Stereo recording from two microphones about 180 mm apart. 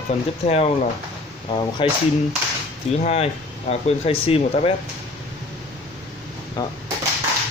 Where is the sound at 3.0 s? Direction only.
35° left (ahead or behind).